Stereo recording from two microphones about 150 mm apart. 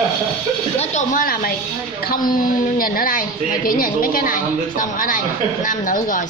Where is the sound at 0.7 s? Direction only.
50° left (ahead or behind).